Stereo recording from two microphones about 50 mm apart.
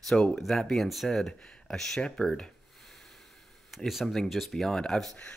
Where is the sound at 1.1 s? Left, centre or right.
Centre.